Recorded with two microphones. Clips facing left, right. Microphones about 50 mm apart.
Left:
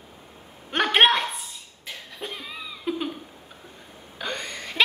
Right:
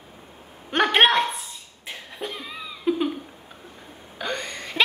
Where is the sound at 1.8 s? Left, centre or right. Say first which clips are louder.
Right 2 dB; right.